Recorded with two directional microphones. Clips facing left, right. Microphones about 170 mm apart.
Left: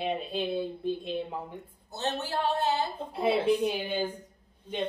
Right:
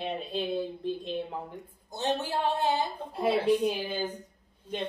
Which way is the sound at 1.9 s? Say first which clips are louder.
Right 2 dB; 15° right (ahead or behind).